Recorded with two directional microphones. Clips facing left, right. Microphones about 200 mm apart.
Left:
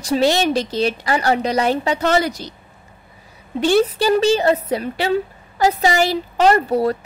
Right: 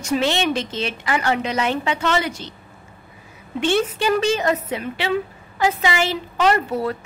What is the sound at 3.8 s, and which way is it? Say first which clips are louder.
A woman's voice: left 4 dB; 35° left (ahead or behind).